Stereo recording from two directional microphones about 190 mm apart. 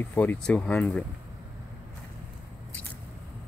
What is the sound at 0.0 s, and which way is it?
Speech, 10° left (ahead or behind).